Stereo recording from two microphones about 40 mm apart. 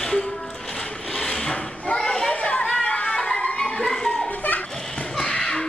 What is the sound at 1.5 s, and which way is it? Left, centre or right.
Children playing, left.